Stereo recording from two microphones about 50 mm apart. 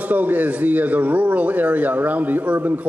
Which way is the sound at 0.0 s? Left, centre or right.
Right.